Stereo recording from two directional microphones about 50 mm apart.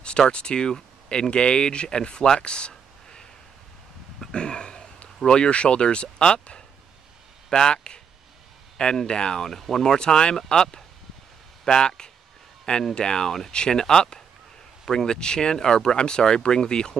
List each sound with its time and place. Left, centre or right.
0.3 s speech: centre
9.9 s speech: centre